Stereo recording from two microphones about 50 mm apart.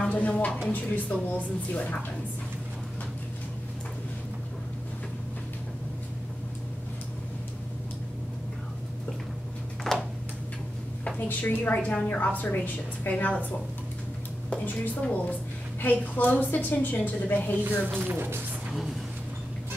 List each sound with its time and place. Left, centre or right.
0.1 s a woman's voice: left
9.9 s a sound: centre
11.1 s a woman's voice: left
14.5 s a woman's voice: left
18.0 s speech: right
18.7 s vehicle: centre